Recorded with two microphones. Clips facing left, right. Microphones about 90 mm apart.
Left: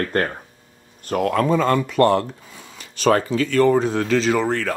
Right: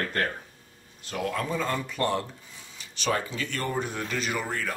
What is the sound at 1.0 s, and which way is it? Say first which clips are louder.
Speech: left 11 dB; 55° left (ahead or behind).